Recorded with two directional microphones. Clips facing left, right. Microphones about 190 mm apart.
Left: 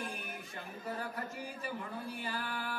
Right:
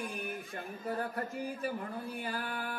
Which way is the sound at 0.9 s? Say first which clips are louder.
Right 5 dB; 55° right (ahead or behind).